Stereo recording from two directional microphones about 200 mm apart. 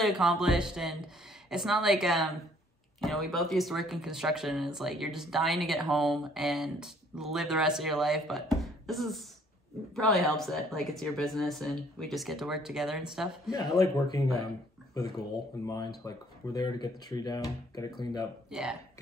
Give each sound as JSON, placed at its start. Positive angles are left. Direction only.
{"t": 0.0, "sound": "speech", "side_deg": -5}
{"t": 15.0, "sound": "speech", "side_deg": 15}
{"t": 18.5, "sound": "speech", "side_deg": 0}